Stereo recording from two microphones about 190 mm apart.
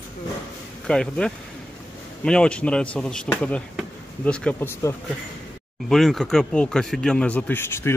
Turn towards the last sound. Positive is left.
turn(degrees=10)  # may be behind; listen again after turning